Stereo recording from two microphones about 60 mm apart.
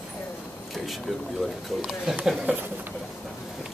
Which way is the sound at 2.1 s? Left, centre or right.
Centre.